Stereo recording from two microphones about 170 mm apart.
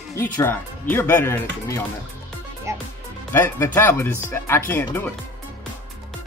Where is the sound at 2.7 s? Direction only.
15° right (ahead or behind).